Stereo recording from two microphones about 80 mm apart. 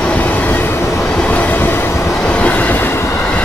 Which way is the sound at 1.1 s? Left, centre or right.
Centre.